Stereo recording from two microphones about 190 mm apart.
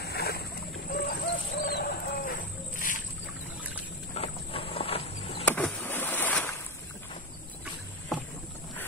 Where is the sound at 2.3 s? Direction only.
45° left (ahead or behind).